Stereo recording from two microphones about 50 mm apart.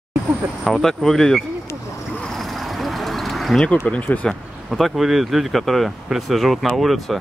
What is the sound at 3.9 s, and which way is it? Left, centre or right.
Speech, left.